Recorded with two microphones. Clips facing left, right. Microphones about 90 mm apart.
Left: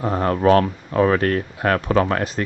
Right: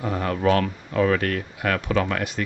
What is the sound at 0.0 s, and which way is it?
Speech, 35° left (ahead or behind).